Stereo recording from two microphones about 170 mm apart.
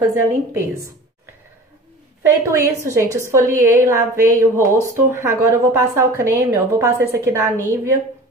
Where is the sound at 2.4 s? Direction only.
15° right (ahead or behind).